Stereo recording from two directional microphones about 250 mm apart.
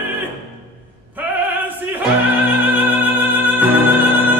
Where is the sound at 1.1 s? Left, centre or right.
Centre.